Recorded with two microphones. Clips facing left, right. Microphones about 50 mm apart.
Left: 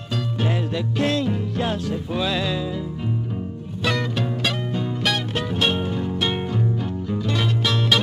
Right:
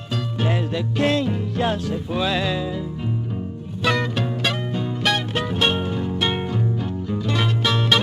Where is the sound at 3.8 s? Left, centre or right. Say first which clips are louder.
Right 2 dB; centre.